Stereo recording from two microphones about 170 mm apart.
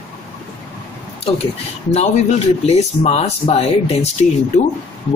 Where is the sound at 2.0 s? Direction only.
40° left (ahead or behind).